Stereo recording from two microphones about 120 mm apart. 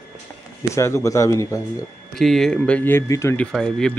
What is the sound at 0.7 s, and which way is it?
Speech, 25° left (ahead or behind).